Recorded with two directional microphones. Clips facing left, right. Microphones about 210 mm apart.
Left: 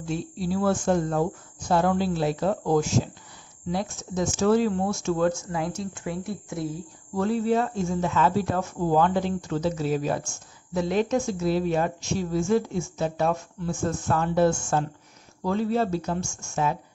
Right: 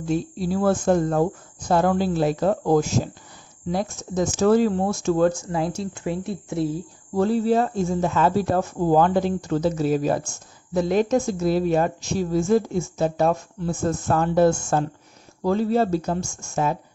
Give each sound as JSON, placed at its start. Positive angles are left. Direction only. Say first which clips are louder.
{"t": 0.0, "sound": "a woman's voice", "louder": "right 5 dB", "side_deg": -45}
{"t": 5.8, "sound": "a woman's voice", "louder": "right 4 dB", "side_deg": -25}